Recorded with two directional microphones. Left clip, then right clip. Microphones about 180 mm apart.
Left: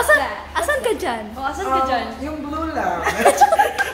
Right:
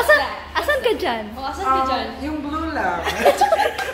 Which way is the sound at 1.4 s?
30° left (ahead or behind).